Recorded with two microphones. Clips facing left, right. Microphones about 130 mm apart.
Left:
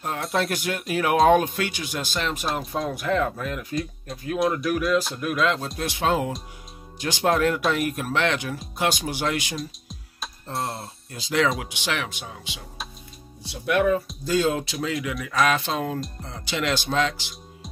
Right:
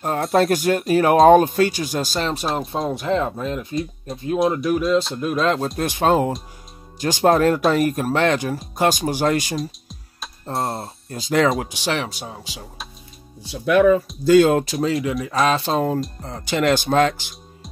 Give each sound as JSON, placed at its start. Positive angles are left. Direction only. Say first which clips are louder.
{"t": 0.4, "sound": "speech", "louder": "right 10 dB", "side_deg": -45}
{"t": 9.6, "sound": "music", "louder": "right 6 dB", "side_deg": 0}
{"t": 10.5, "sound": "speech", "louder": "right 5 dB", "side_deg": 0}
{"t": 11.1, "sound": "speech", "louder": "right 5 dB", "side_deg": -45}
{"t": 14.2, "sound": "speech", "louder": "right 12 dB", "side_deg": -65}
{"t": 16.2, "sound": "speech", "louder": "right 7 dB", "side_deg": -45}